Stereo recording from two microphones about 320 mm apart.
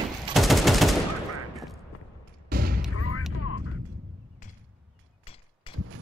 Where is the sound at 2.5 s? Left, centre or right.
Right.